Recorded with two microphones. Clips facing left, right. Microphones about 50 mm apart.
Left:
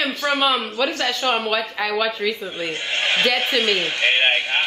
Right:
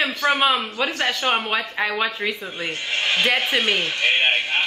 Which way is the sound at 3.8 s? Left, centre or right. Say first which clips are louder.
Left 1 dB; left.